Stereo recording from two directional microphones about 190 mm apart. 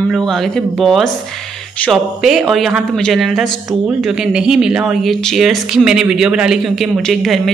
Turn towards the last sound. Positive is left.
turn(degrees=0)  # may be behind; listen again after turning